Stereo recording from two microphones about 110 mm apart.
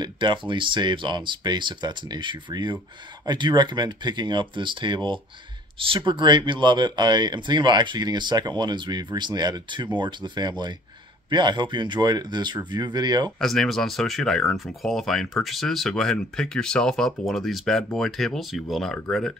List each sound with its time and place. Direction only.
0.0 s speech: 45° right (ahead or behind)
13.4 s speech: 5° left (ahead or behind)